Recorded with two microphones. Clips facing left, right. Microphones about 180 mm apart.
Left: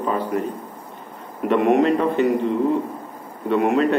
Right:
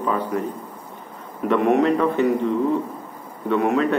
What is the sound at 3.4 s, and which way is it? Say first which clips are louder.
Speech: left 1 dB; 15° left (ahead or behind).